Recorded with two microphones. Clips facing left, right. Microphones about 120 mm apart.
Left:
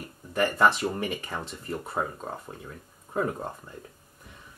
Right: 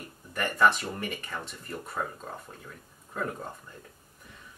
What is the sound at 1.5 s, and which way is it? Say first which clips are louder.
Speech: left 5 dB; 30° left (ahead or behind).